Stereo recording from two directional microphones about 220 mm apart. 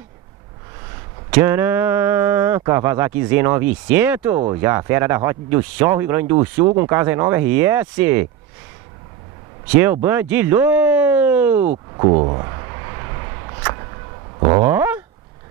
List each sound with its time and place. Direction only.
1.3 s speech: 10° right (ahead or behind)
10.0 s speech: 10° right (ahead or behind)
11.7 s a sound: 25° right (ahead or behind)
14.6 s dog: 10° right (ahead or behind)